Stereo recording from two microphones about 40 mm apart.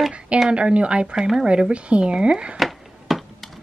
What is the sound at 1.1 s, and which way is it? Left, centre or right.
Speech, centre.